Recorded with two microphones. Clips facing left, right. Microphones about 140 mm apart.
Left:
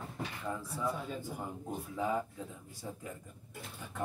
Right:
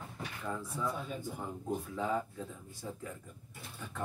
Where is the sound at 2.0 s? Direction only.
10° left (ahead or behind).